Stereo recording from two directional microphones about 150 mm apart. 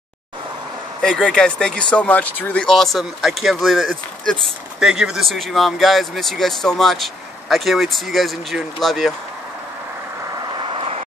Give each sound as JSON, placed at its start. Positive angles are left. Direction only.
{"t": 1.0, "sound": "speech", "side_deg": 5}
{"t": 10.6, "sound": "vehicle", "side_deg": -40}